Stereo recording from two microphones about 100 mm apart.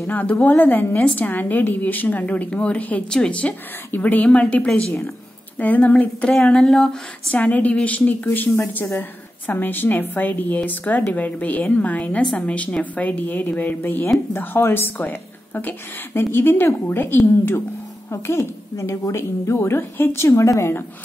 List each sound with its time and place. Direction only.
0.0 s a woman's voice: 15° left (ahead or behind)